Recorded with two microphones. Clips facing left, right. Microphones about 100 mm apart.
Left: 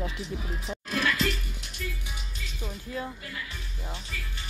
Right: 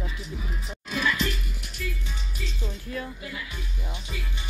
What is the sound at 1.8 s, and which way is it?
Music, 35° left (ahead or behind).